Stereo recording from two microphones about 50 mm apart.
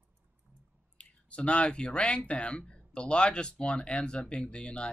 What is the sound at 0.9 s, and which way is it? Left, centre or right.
Speech, left.